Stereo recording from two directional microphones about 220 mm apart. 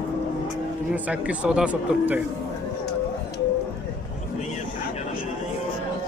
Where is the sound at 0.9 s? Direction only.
5° right (ahead or behind).